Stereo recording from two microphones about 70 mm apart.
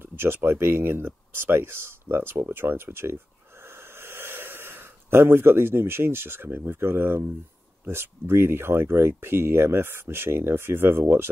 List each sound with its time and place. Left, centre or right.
0.0 s speech: right